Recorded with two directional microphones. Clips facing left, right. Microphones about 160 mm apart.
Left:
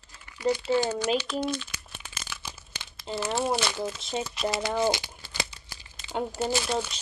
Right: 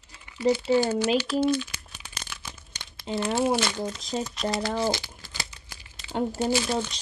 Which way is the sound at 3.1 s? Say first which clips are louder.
Right 3 dB; centre (ahead or behind).